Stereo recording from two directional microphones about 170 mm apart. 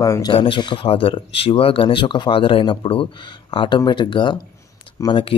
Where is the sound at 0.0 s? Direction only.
25° left (ahead or behind).